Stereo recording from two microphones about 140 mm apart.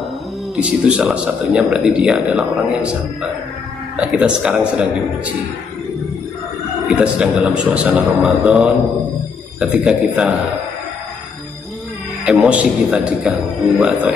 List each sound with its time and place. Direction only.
0.6 s a man's voice: 5° right (ahead or behind)
6.9 s a man's voice: 5° right (ahead or behind)
12.3 s speech: 5° right (ahead or behind)